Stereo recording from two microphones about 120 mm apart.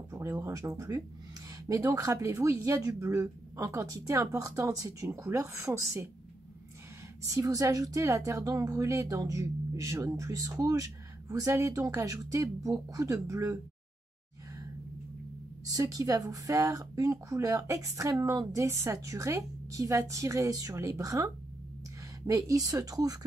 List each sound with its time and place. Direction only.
0.1 s a woman's voice: 25° right (ahead or behind)
7.3 s a woman's voice: 30° right (ahead or behind)
15.6 s a woman's voice: 30° right (ahead or behind)